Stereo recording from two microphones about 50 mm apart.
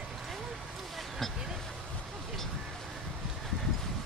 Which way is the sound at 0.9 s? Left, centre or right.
Centre.